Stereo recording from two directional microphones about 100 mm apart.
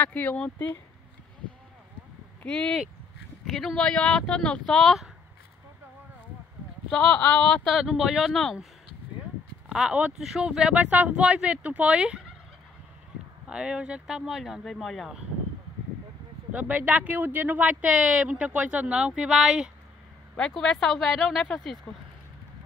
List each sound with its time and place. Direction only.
0.0 s speech: 15° left (ahead or behind)
2.4 s speech: 10° left (ahead or behind)
7.3 s speech: centre (ahead or behind)
9.7 s speech: 5° right (ahead or behind)
13.5 s speech: 10° right (ahead or behind)
16.5 s speech: 15° right (ahead or behind); by 21.5 s centre (ahead or behind)
21.9 s speech: 10° left (ahead or behind)